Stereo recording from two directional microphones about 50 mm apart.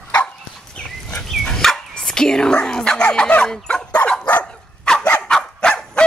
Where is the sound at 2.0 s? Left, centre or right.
Centre.